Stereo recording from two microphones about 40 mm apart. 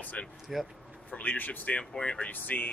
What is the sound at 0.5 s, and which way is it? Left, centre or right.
Speech, centre.